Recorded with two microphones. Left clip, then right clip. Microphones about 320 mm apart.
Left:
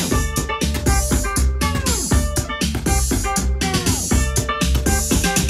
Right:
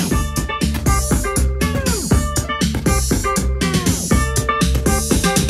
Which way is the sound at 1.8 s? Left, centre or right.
Centre.